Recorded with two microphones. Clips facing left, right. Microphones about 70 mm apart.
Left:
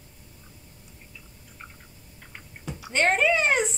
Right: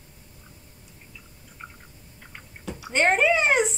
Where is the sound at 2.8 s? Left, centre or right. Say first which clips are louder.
Right 2 dB; centre.